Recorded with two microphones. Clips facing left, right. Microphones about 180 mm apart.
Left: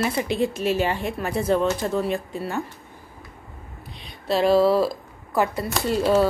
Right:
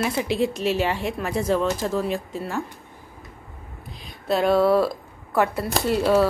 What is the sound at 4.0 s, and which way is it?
Speech, centre (ahead or behind).